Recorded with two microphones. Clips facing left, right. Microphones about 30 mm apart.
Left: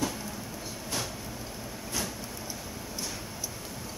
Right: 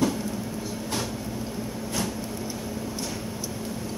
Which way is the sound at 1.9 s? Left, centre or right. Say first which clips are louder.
Right 4 dB; centre.